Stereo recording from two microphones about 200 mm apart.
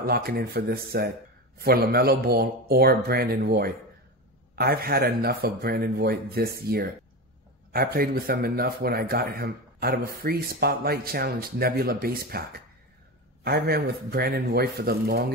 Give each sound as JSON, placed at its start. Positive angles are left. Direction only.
{"t": 0.0, "sound": "speech", "side_deg": -50}